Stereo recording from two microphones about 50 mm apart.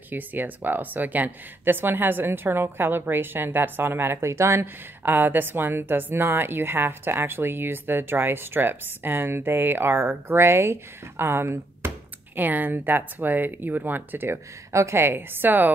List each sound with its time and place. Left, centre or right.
0.1 s speech: right
12.4 s speech: right
14.7 s a woman's voice: right
15.0 s speech: right